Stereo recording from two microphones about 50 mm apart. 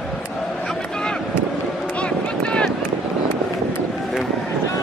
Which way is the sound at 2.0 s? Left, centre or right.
Left.